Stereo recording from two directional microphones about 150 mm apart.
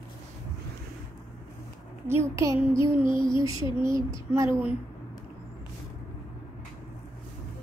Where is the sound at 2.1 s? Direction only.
20° right (ahead or behind).